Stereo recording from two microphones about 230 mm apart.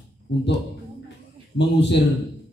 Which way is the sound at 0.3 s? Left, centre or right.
Left.